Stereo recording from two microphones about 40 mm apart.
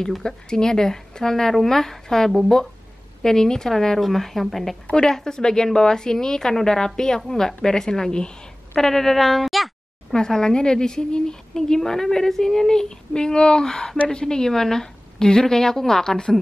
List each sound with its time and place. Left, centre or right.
0.2 s a woman's voice: centre
10.1 s a woman's voice: centre